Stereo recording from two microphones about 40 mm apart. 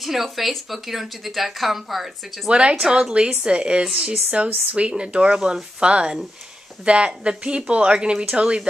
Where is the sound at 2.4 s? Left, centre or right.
Right.